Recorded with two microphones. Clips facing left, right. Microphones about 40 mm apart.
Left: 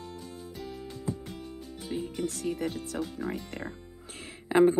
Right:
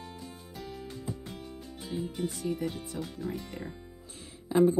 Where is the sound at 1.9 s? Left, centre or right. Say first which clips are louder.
Left 1 dB; left.